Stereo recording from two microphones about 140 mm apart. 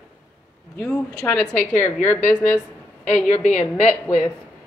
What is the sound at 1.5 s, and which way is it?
A woman's voice, 15° left (ahead or behind).